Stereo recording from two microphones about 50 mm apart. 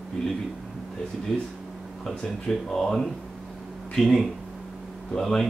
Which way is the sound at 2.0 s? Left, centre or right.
Centre.